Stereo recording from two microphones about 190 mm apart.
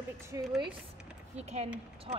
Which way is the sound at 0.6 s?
25° right (ahead or behind).